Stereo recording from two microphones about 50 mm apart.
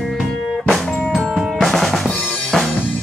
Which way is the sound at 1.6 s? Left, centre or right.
Centre.